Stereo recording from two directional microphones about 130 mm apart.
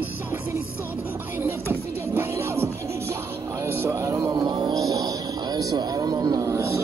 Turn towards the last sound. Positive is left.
turn(degrees=-25)  # may be behind; listen again after turning